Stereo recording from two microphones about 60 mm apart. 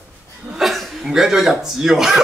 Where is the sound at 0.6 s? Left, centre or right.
Centre.